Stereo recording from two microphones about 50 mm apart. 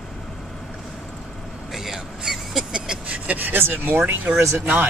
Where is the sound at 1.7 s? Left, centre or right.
Centre.